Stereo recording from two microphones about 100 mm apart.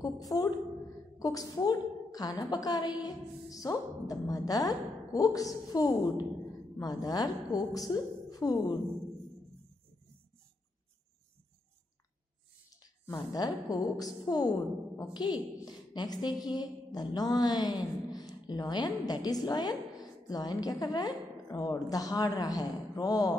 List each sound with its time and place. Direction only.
0.0 s a woman's voice: 35° left (ahead or behind)
13.3 s a woman's voice: 40° left (ahead or behind)